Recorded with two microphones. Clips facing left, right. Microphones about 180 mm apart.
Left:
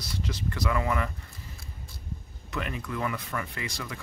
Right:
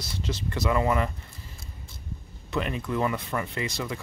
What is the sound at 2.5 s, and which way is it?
Speech, 25° right (ahead or behind).